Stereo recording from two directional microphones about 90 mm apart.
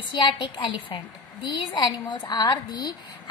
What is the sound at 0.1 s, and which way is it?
A woman's voice, 60° left (ahead or behind).